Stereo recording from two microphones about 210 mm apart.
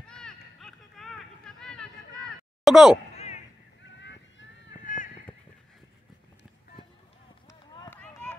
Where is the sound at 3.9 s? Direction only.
60° left (ahead or behind).